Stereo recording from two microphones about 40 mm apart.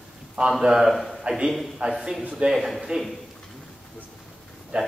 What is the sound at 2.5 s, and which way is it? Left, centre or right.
Speech, centre.